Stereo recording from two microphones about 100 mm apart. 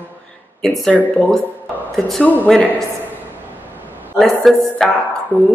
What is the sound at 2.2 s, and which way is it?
Speech, 15° left (ahead or behind).